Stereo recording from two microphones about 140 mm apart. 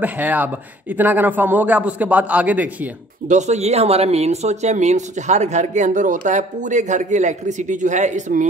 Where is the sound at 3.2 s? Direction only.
55° right (ahead or behind).